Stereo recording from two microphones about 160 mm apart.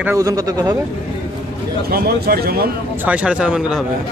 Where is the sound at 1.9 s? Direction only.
70° right (ahead or behind).